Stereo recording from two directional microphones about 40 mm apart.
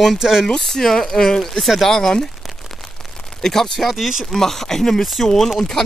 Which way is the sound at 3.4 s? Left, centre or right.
Centre.